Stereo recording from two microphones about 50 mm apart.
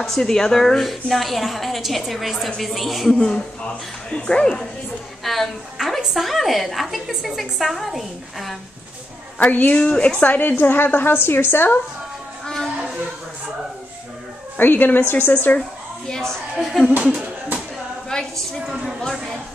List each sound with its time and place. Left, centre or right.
0.0 s a woman's voice: centre
3.1 s speech: centre
5.2 s a woman's voice: centre
9.4 s a woman's voice: left
10.2 s a woman's voice: left
12.4 s a sound: centre
14.6 s a woman's voice: left
16.1 s speech: centre
16.6 s speech: centre
18.1 s a sound: centre
18.7 s a woman's voice: centre